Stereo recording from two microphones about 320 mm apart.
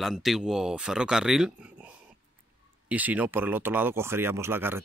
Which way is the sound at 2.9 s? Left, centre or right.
Centre.